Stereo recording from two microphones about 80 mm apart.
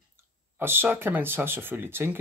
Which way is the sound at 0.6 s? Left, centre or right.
Right.